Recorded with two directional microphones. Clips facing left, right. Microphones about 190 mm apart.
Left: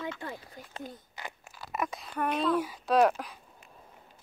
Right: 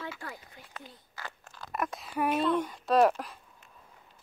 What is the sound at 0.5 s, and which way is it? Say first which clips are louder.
Speech: left 6 dB; 40° left (ahead or behind).